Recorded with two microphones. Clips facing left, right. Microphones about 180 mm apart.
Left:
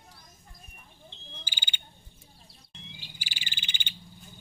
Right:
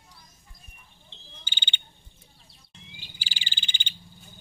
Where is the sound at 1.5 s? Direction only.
25° right (ahead or behind).